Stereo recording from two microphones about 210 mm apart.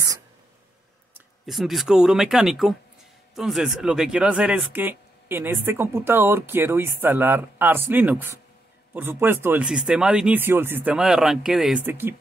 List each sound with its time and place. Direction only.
1.1 s speech: centre (ahead or behind)